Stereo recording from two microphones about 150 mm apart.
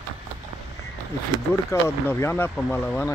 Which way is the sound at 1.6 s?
15° left (ahead or behind).